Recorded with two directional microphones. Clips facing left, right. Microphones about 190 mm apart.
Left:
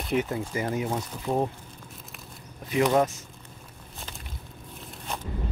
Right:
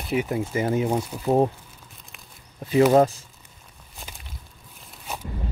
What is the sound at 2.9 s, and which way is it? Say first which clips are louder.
Speech: right 6 dB; 30° right (ahead or behind).